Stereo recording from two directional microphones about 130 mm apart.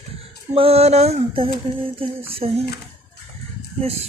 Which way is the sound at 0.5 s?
50° right (ahead or behind).